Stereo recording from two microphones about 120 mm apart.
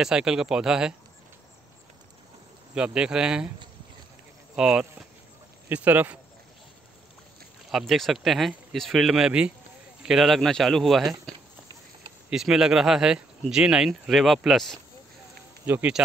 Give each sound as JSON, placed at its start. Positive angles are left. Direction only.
{"t": 0.0, "sound": "speech", "side_deg": -5}
{"t": 2.7, "sound": "speech", "side_deg": -10}
{"t": 4.6, "sound": "speech", "side_deg": -10}
{"t": 7.7, "sound": "speech", "side_deg": 0}
{"t": 15.6, "sound": "speech", "side_deg": -15}